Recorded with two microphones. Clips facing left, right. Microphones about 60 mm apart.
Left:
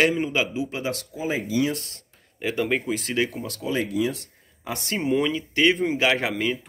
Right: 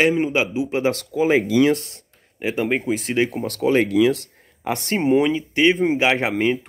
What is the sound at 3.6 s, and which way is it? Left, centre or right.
Speech, right.